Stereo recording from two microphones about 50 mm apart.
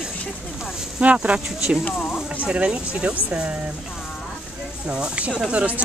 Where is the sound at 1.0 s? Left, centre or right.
Right.